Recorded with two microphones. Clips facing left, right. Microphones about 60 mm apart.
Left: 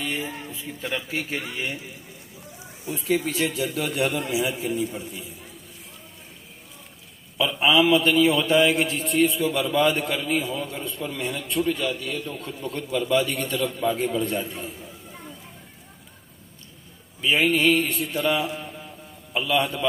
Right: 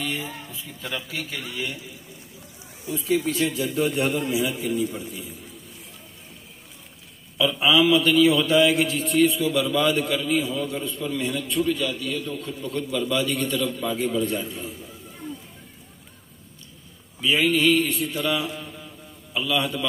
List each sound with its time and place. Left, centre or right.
0.0 s speech: centre
0.5 s a man's voice: left
2.9 s speech: left
4.0 s a man's voice: centre
4.5 s a sound: left
7.3 s a man's voice: left
17.2 s a sound: left
18.1 s mantra: left
19.3 s a sound: left